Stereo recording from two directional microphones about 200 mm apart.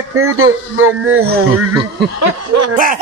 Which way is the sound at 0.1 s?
90° right.